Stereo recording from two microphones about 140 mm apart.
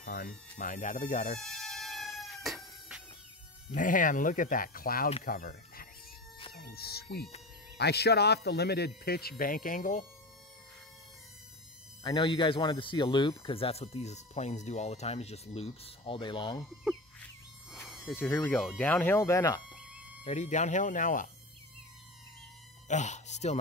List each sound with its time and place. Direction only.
0.0 s speech: 90° left
0.6 s speech: 70° left (ahead or behind)
1.4 s cat: centre (ahead or behind)
3.7 s speech: 70° left (ahead or behind); by 7.2 s 90° left
9.0 s speech: 90° left; by 10.0 s 75° left (ahead or behind)
12.0 s speech: 35° left (ahead or behind)
17.8 s insect: centre (ahead or behind)
18.1 s speech: 15° left (ahead or behind)
19.7 s a sound: 10° right (ahead or behind)
20.2 s speech: 55° left (ahead or behind)
22.8 s speech: 60° left (ahead or behind)